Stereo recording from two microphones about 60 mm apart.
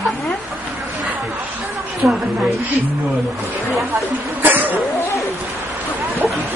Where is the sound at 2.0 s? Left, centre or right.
Right.